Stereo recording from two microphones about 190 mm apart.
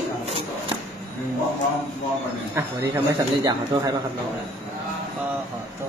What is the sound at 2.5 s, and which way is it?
Speech, 15° right (ahead or behind).